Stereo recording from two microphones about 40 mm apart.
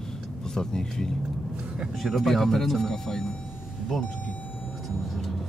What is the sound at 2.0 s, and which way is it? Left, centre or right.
Speech, centre.